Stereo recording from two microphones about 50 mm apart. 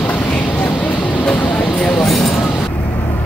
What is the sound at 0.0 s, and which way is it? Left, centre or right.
Vehicle, left.